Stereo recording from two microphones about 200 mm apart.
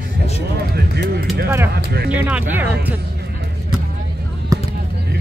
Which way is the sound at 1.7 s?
50° right (ahead or behind).